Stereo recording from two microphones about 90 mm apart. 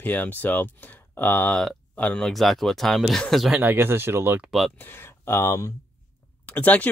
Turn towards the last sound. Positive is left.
turn(degrees=15)  # may be behind; listen again after turning